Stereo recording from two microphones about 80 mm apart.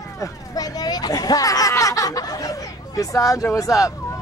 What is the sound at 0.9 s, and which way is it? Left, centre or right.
Speech, left.